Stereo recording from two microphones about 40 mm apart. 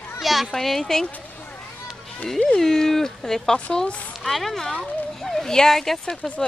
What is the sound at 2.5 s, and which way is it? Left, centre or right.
Speech, centre.